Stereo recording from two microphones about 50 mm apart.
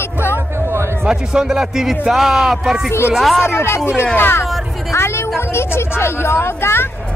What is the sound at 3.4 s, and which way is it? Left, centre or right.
Speech, left.